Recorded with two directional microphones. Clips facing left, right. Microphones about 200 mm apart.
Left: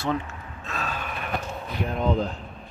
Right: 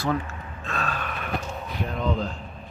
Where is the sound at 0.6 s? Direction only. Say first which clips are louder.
Right 2 dB; 5° left (ahead or behind).